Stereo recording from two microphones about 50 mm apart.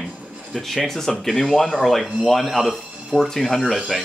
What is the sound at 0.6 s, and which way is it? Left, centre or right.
Speech, centre.